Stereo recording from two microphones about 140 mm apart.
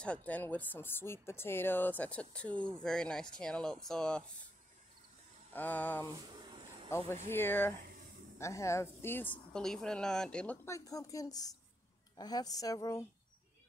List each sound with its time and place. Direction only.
0.0 s a woman's voice: 10° left (ahead or behind)
5.5 s a woman's voice: 10° left (ahead or behind)
6.1 s a sound: 35° right (ahead or behind)
6.9 s a woman's voice: 20° left (ahead or behind)